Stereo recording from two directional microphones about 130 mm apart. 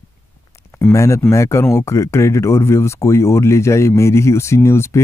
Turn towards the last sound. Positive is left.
turn(degrees=20)  # may be behind; listen again after turning